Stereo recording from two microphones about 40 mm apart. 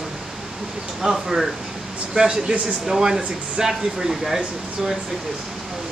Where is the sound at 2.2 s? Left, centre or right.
Centre.